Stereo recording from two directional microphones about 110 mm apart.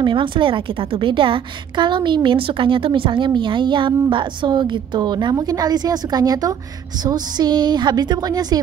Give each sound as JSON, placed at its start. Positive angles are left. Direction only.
{"t": 0.0, "sound": "a woman's voice", "side_deg": -50}